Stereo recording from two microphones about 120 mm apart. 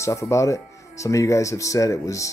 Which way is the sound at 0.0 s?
25° left (ahead or behind).